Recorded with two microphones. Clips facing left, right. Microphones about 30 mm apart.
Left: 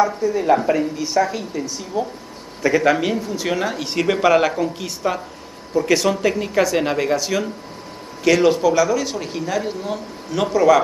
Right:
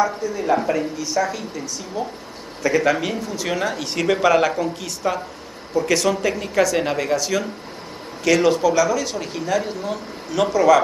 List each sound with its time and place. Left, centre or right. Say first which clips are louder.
0.0 s speech: left 3 dB; centre